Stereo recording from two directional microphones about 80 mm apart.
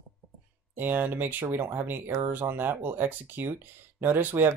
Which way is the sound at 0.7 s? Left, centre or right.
Right.